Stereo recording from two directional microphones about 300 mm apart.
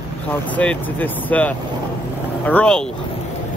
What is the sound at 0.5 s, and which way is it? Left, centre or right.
Speech, centre.